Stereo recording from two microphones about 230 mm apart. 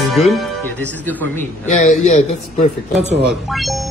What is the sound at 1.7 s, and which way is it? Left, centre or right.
Speech, left.